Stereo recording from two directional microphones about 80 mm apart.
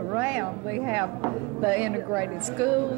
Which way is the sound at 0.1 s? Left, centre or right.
Right.